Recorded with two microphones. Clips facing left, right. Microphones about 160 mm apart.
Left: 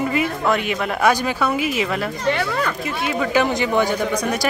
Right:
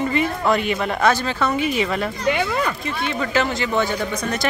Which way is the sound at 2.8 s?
5° left (ahead or behind).